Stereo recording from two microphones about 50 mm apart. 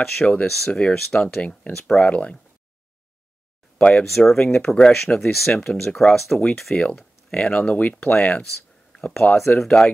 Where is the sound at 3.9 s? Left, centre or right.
Centre.